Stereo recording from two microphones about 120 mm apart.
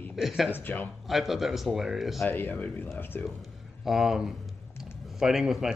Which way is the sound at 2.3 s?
15° left (ahead or behind).